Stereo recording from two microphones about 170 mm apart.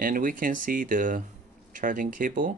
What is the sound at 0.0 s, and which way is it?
Speech, 55° right (ahead or behind).